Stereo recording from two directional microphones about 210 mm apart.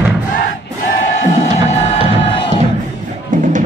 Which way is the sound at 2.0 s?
30° right (ahead or behind).